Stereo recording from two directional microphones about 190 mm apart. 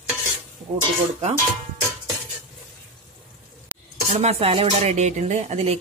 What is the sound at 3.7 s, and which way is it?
Dishes, 10° right (ahead or behind).